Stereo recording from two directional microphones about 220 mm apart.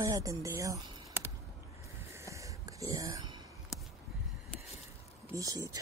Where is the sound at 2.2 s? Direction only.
15° right (ahead or behind).